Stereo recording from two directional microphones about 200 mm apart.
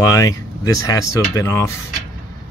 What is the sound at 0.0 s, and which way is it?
Speech, 15° left (ahead or behind).